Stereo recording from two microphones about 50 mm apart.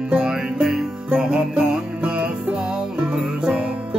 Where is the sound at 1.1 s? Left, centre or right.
Centre.